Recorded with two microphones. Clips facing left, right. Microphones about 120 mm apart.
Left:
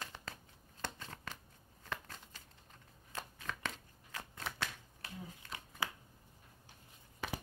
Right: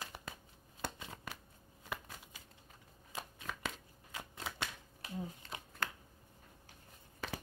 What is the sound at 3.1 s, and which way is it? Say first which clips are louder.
Shuffling cards: even; 10° right (ahead or behind).